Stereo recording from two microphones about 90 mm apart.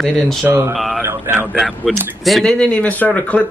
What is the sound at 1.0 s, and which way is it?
Speech, 25° right (ahead or behind).